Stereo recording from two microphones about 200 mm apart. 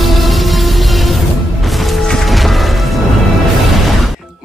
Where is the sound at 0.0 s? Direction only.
Centre (ahead or behind).